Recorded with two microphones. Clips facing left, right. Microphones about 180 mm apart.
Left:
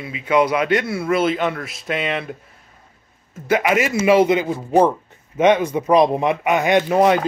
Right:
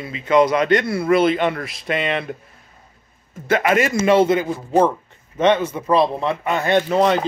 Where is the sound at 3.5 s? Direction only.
10° left (ahead or behind).